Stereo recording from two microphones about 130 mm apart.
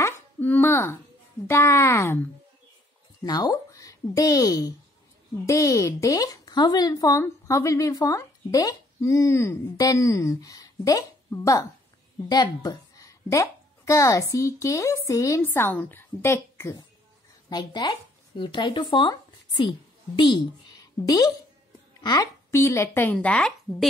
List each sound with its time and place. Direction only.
0.0 s a sound: 15° left (ahead or behind)
1.5 s speech: 20° left (ahead or behind)
3.3 s a woman's voice: 30° left (ahead or behind)
17.5 s speech: 30° left (ahead or behind)
23.1 s speech: 10° left (ahead or behind)